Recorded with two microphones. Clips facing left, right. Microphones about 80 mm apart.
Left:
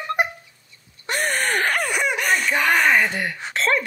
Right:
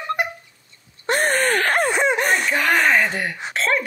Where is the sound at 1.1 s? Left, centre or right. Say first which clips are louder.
Right 4 dB; right.